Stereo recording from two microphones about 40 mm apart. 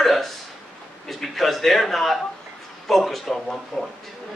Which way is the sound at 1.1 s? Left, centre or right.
Centre.